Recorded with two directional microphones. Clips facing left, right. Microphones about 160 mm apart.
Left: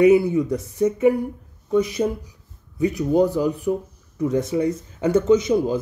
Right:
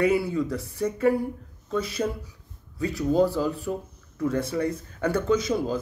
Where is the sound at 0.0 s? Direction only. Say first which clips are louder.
Left 8 dB; 20° left (ahead or behind).